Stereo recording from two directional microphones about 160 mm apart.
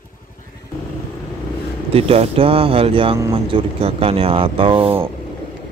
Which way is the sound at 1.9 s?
35° right (ahead or behind).